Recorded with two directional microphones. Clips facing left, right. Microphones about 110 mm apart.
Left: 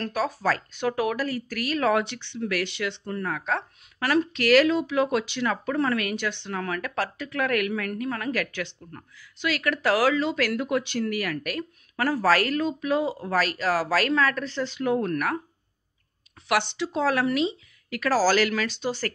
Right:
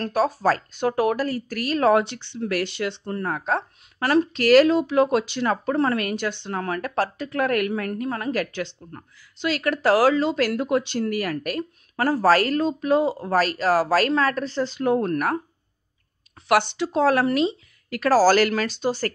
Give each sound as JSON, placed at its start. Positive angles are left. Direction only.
{"t": 0.0, "sound": "speech", "side_deg": -35}
{"t": 16.4, "sound": "speech", "side_deg": -45}